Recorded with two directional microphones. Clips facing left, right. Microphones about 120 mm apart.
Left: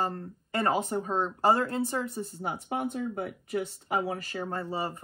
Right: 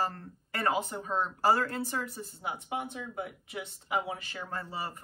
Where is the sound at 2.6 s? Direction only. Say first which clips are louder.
Left 5 dB; 45° left (ahead or behind).